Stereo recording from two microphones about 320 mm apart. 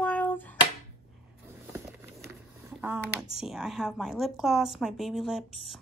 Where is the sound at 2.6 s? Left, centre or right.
Centre.